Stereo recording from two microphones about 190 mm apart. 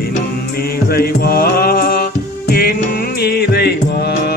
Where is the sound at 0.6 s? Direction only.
55° left (ahead or behind).